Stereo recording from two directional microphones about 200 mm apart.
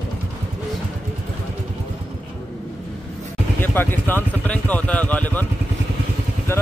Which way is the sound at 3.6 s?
10° left (ahead or behind).